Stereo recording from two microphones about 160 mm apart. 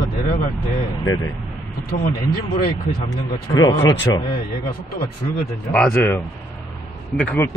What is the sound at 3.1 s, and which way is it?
Speech, 25° left (ahead or behind).